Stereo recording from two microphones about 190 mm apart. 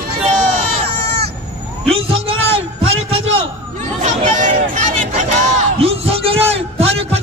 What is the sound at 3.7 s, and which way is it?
Chatter, 40° right (ahead or behind).